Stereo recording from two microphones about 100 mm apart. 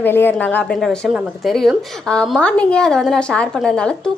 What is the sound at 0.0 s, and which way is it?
Speech, 20° left (ahead or behind).